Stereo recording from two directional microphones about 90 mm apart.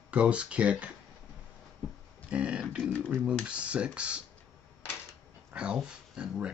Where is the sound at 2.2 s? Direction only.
15° right (ahead or behind).